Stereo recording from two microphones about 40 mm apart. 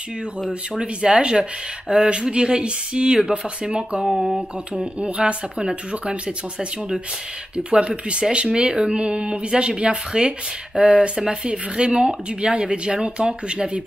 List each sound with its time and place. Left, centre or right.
0.4 s speech: right
4.0 s speech: centre
4.9 s speech: right